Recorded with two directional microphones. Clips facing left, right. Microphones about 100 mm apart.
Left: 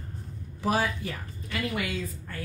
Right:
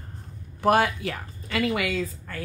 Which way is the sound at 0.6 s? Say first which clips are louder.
Right 6 dB; 65° right (ahead or behind).